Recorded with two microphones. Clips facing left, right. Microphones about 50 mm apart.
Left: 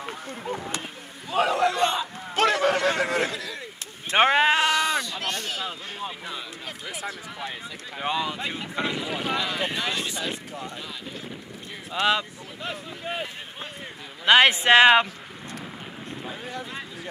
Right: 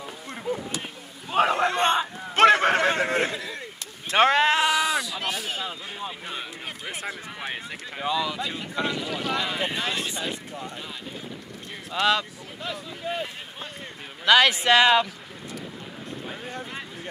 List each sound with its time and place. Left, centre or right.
1.3 s a sound: right
4.1 s sheep: centre
4.6 s sheep: centre
5.6 s a sound: centre
8.0 s speech: left
8.8 s speech: centre
9.4 s speech: centre
12.1 s a sound: left
14.2 s speech: left